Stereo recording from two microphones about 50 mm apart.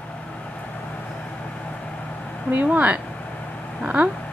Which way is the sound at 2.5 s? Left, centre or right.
Right.